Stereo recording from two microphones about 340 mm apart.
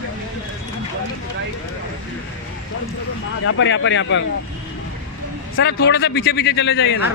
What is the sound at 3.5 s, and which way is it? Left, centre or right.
Speech, left.